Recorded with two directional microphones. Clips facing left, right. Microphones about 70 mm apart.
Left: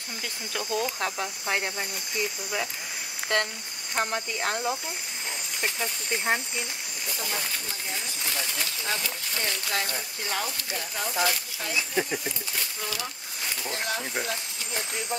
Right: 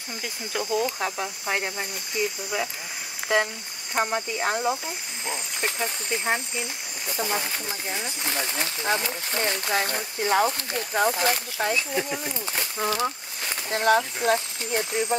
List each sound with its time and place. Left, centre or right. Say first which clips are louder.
0.5 s speech: right 4 dB; centre
6.1 s speech: even; centre
7.2 s speech: right 6 dB; right